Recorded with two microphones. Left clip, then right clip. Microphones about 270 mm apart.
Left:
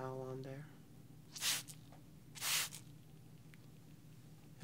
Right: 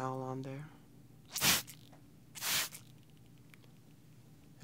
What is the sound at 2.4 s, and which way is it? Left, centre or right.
Spray, centre.